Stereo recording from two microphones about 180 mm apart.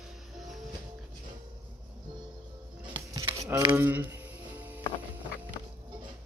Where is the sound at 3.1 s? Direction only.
20° right (ahead or behind).